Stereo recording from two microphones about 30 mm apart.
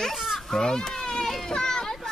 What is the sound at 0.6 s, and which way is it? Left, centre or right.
Speech, left.